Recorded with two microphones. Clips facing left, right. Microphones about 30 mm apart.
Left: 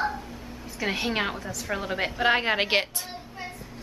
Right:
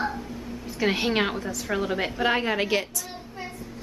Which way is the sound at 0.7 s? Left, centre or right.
Centre.